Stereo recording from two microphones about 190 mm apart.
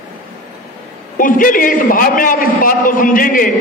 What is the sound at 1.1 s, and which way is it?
A man's voice, 45° left (ahead or behind).